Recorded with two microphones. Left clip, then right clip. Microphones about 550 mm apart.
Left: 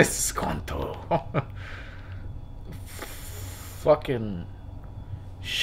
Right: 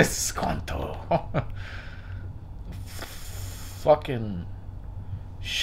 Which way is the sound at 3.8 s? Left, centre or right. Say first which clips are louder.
Even; centre.